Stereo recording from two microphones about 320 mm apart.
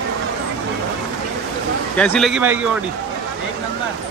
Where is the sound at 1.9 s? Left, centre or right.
Centre.